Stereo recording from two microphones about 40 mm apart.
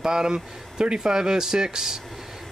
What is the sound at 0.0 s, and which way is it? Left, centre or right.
Speech, centre.